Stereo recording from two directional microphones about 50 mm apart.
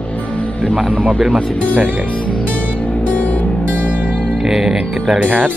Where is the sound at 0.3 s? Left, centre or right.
Left.